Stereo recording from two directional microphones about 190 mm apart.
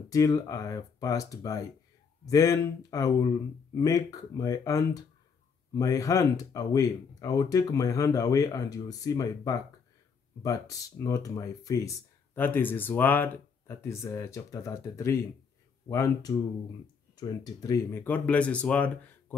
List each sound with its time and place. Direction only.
0.1 s speech: 20° left (ahead or behind)